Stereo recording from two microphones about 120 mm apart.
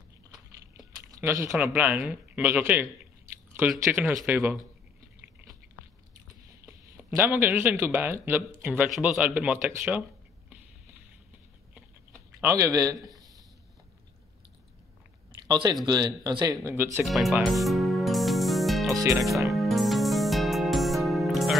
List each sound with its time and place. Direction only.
1.1 s speech: 25° right (ahead or behind)
1.6 s speech: 15° right (ahead or behind)
7.2 s speech: 15° right (ahead or behind)
12.1 s speech: 25° right (ahead or behind)
15.4 s speech: 35° right (ahead or behind)
16.6 s speech: 20° right (ahead or behind)
17.0 s music: centre (ahead or behind)
19.1 s speech: centre (ahead or behind)
19.5 s music: centre (ahead or behind)